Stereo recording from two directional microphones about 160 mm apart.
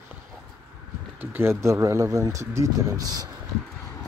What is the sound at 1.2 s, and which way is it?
Speech, 15° right (ahead or behind).